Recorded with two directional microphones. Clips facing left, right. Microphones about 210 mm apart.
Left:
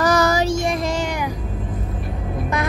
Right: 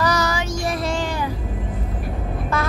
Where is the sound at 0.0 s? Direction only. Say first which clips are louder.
Left 4 dB; 50° left (ahead or behind).